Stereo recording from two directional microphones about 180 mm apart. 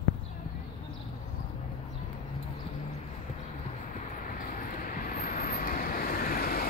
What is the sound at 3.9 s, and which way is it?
Vehicle, 50° left (ahead or behind).